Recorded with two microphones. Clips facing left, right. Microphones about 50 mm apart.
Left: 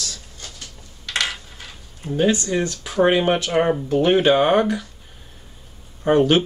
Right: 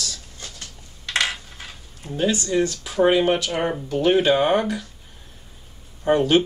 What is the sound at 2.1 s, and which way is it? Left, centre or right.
Speech, left.